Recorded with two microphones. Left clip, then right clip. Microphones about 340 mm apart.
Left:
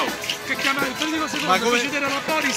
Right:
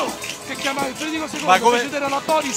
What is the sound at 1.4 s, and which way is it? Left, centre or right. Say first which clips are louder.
Speech: right 6 dB; right.